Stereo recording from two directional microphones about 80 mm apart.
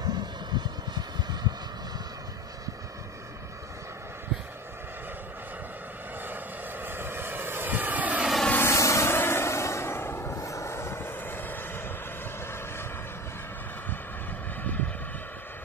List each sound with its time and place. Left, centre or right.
0.0 s vehicle: right
6.2 s vehicle: right
8.6 s vehicle: left
14.6 s vehicle: left